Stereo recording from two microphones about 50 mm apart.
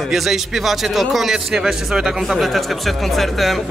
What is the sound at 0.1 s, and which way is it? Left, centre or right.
A man's voice, centre.